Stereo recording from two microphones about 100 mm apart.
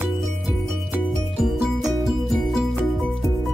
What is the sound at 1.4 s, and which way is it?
Music, centre (ahead or behind).